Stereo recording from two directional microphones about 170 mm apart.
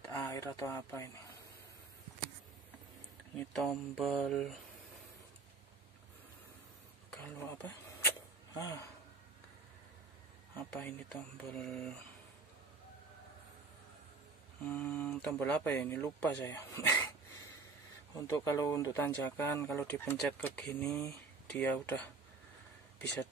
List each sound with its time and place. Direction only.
0.1 s speech: 15° left (ahead or behind)
3.3 s speech: 5° left (ahead or behind)
7.1 s speech: 10° left (ahead or behind)
10.5 s speech: 10° left (ahead or behind)
14.7 s speech: centre (ahead or behind)
18.2 s speech: 15° left (ahead or behind)